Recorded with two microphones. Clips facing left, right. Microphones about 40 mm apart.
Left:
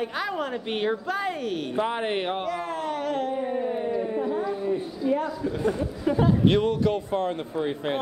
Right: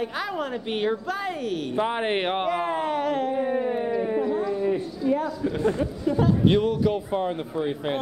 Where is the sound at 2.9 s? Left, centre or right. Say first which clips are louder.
Right 3 dB; centre.